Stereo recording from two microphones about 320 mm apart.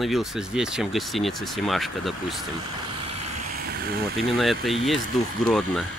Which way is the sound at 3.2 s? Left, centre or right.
Right.